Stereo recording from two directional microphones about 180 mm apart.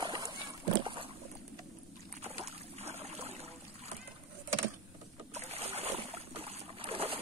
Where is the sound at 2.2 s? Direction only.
35° right (ahead or behind).